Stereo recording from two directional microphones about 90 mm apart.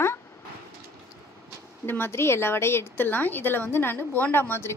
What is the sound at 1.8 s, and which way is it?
A woman's voice, 25° left (ahead or behind).